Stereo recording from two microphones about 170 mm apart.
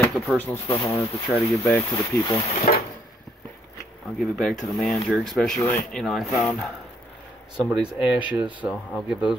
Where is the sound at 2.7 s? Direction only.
55° left (ahead or behind).